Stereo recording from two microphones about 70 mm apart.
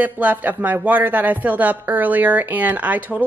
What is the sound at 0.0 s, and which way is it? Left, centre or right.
Speech, right.